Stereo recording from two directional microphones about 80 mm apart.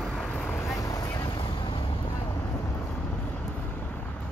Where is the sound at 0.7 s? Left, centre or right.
Left.